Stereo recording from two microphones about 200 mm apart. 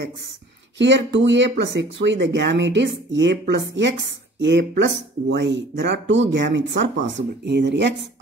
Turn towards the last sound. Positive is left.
turn(degrees=-60)  # may be behind; listen again after turning